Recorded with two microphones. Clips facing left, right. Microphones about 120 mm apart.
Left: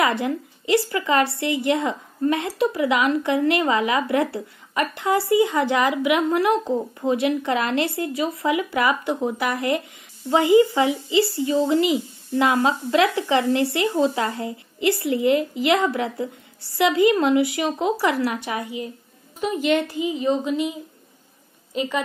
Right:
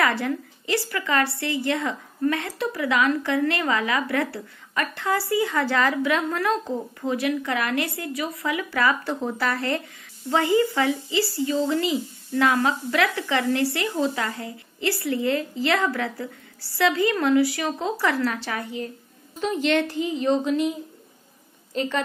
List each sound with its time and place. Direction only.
0.0 s a woman's voice: 20° left (ahead or behind); by 20.7 s 5° left (ahead or behind)
21.7 s a woman's voice: 10° left (ahead or behind)